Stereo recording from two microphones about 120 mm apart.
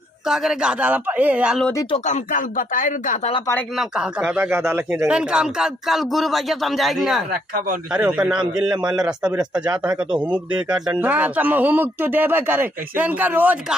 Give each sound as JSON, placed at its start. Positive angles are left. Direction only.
{"t": 0.3, "sound": "speech", "side_deg": -5}
{"t": 2.0, "sound": "speech", "side_deg": 90}
{"t": 3.7, "sound": "speech", "side_deg": -5}